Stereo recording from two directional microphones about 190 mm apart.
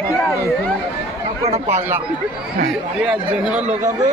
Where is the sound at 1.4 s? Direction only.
10° right (ahead or behind).